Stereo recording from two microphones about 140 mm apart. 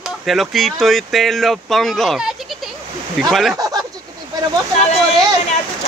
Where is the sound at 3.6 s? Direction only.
25° right (ahead or behind).